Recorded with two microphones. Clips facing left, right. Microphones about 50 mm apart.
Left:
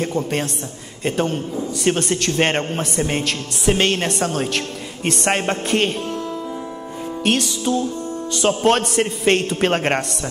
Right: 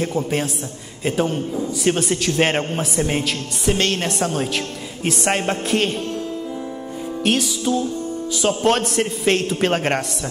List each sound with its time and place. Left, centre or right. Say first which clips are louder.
0.0 s a man's voice: even; centre
7.2 s a man's voice: even; centre